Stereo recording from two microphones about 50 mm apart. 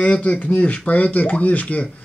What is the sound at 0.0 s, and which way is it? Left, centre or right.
Speech, left.